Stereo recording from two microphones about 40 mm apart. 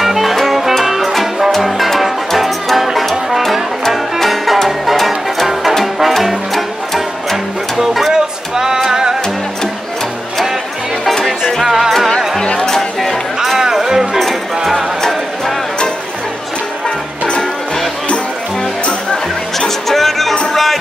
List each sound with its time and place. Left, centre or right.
0.0 s music: centre
11.2 s music: centre
11.6 s music: centre
12.5 s a sound: centre
13.4 s music: centre
15.0 s music: centre
19.9 s music: centre